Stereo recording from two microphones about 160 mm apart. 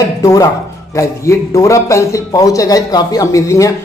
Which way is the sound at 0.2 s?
20° left (ahead or behind).